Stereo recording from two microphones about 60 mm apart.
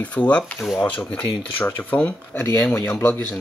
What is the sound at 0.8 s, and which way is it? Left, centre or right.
Speech, left.